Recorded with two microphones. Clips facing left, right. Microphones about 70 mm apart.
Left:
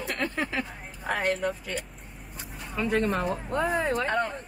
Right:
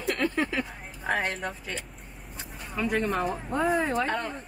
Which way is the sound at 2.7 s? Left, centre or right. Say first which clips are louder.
Left 1 dB; centre.